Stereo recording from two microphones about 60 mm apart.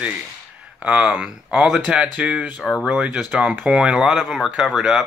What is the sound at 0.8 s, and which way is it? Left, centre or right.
Speech, centre.